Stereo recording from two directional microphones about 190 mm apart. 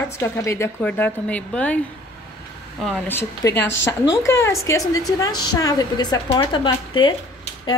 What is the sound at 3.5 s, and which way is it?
Speech, 70° left (ahead or behind).